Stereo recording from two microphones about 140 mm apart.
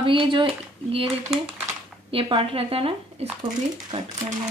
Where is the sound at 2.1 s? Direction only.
40° right (ahead or behind).